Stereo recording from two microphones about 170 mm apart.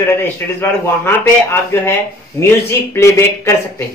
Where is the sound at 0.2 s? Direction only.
10° left (ahead or behind).